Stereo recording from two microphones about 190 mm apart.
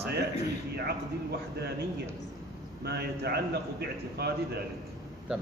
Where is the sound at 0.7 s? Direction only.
60° right (ahead or behind).